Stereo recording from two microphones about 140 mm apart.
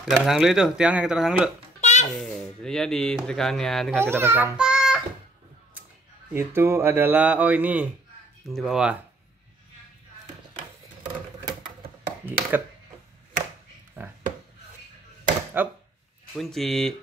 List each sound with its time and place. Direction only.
0.0 s speech: centre (ahead or behind)
1.8 s babbling: 55° left (ahead or behind)
2.0 s speech: 5° left (ahead or behind)
4.0 s a child's voice: 20° right (ahead or behind)
6.3 s speech: 15° right (ahead or behind)
12.3 s a sound: 15° right (ahead or behind)
14.0 s a sound: 15° right (ahead or behind)
15.6 s speech: 15° right (ahead or behind)
16.3 s speech: centre (ahead or behind)